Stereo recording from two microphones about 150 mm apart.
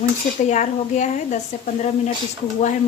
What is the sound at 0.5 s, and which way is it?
A woman's voice, 55° left (ahead or behind).